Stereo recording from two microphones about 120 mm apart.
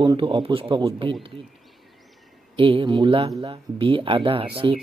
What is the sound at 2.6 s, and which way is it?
Speech, 45° right (ahead or behind).